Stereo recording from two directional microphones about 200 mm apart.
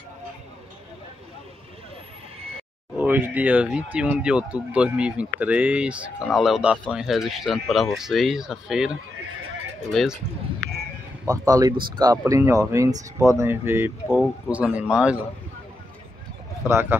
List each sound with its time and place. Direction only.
3.0 s speech: 10° right (ahead or behind)
9.9 s speech: centre (ahead or behind)
11.2 s speech: 20° right (ahead or behind)
14.0 s speech: 5° left (ahead or behind)
16.6 s speech: 15° right (ahead or behind)